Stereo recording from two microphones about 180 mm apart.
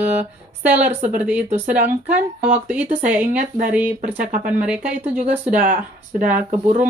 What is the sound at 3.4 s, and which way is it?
Speech, 50° right (ahead or behind).